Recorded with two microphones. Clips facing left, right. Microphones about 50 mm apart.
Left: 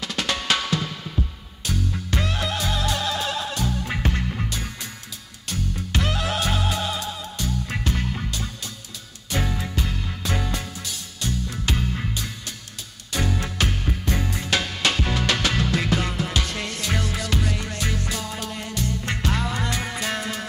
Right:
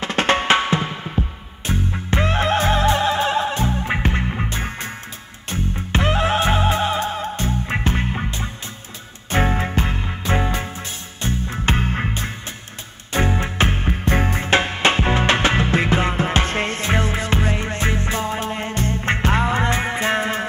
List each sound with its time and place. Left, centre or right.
0.0 s drum: right
1.7 s music: right